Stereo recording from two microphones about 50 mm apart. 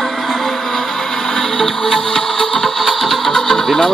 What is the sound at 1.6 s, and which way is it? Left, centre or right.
Music, centre.